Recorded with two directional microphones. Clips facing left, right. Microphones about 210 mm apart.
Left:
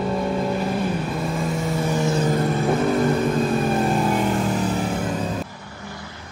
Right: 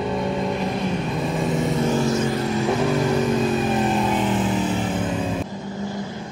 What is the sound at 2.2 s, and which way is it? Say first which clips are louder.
Vehicle: left 1 dB; 50° left (ahead or behind).